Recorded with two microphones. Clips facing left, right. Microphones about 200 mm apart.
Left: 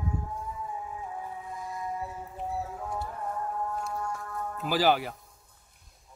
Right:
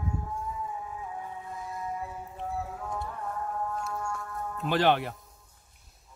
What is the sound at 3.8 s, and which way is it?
Music, centre (ahead or behind).